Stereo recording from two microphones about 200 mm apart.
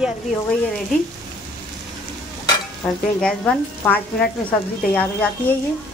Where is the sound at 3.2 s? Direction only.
5° left (ahead or behind).